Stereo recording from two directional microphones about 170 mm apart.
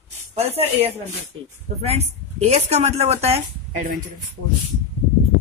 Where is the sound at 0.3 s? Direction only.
35° right (ahead or behind).